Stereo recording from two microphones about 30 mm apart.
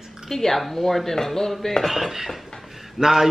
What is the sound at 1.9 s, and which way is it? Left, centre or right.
Speech, centre.